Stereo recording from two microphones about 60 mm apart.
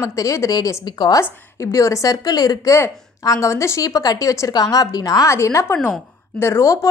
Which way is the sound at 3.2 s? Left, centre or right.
Left.